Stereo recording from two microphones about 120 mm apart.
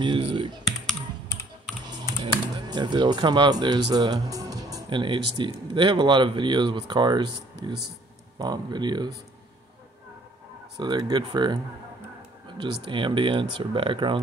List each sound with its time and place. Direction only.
0.0 s speech: 45° right (ahead or behind)
1.9 s speech: 35° right (ahead or behind)
10.8 s speech: 35° right (ahead or behind)